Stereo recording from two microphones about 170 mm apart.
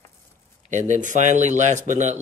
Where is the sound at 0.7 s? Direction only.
45° right (ahead or behind).